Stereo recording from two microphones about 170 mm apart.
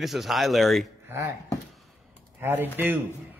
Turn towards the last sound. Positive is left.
turn(degrees=-10)  # may be behind; listen again after turning